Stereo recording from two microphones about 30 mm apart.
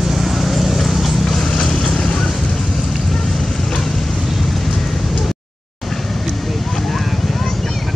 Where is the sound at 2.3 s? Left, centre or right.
Centre.